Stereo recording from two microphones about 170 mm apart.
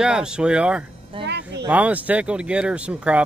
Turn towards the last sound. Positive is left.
turn(degrees=-5)  # may be behind; listen again after turning